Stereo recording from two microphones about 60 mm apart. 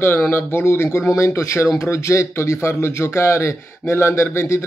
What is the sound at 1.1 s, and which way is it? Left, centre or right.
A man's voice, left.